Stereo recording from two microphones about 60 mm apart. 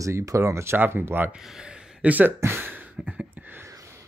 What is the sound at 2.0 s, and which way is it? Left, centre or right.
Speech, right.